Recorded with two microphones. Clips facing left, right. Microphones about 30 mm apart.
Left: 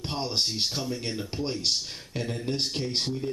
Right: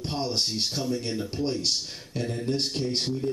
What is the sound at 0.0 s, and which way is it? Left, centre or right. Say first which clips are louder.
A man's voice: right 1 dB; centre.